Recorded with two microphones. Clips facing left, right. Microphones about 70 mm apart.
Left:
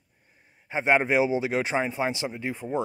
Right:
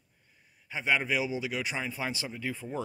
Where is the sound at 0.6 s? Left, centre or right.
Left.